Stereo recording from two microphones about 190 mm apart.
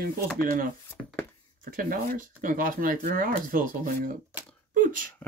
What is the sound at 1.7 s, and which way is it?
Speech, 45° right (ahead or behind).